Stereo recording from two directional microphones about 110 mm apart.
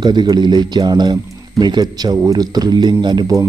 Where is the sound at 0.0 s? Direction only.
40° right (ahead or behind).